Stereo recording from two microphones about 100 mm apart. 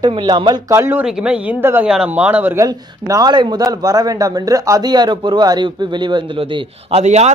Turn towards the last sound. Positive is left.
turn(degrees=-75)  # may be behind; listen again after turning